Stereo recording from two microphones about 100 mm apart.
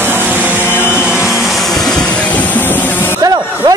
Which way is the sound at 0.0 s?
20° right (ahead or behind).